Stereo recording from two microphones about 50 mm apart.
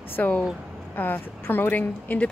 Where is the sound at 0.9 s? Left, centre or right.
Left.